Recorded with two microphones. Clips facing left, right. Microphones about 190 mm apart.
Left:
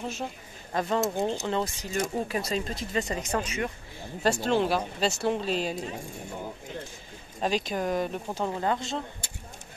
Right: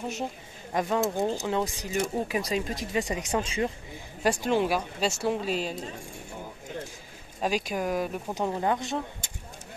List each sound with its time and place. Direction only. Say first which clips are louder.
0.0 s a woman's voice: right 1 dB; 20° right (ahead or behind)
0.7 s speech: right 1 dB; 5° right (ahead or behind)
3.4 s a woman's voice: right 3 dB; 30° right (ahead or behind)
4.2 s speech: even; 15° right (ahead or behind)
7.4 s speech: even; 10° right (ahead or behind)